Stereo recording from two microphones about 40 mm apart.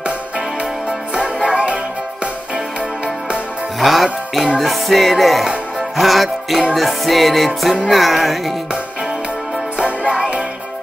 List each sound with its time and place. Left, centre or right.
1.1 s music: right
3.8 s music: centre
9.8 s music: right